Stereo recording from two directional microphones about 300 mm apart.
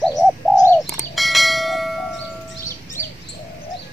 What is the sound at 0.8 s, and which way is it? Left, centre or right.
Church bell, centre.